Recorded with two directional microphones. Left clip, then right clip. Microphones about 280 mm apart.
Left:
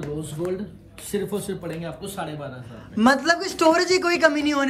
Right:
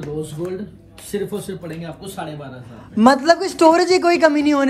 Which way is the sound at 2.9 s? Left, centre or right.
Centre.